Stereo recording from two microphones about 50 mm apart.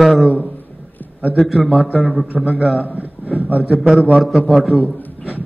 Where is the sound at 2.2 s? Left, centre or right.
Right.